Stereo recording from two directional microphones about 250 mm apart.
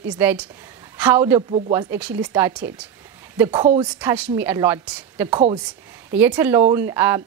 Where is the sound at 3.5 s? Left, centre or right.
Centre.